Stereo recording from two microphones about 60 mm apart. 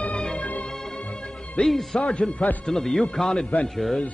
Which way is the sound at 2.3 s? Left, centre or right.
Left.